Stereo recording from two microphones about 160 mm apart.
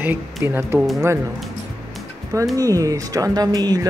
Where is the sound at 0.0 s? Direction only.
15° right (ahead or behind).